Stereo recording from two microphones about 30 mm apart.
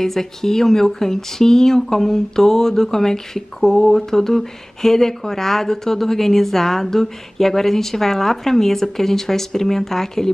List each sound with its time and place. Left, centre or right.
0.0 s speech: centre